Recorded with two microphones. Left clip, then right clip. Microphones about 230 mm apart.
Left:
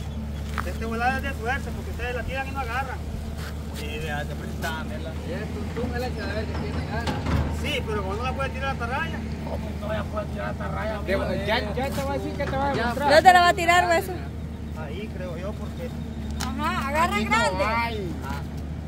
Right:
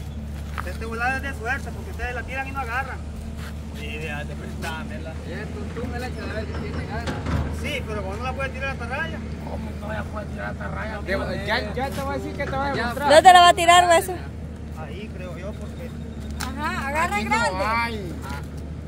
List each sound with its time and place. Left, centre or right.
0.8 s speech: centre
6.7 s speech: centre
9.8 s speech: centre; by 14.0 s right
16.5 s speech: centre
17.6 s speech: right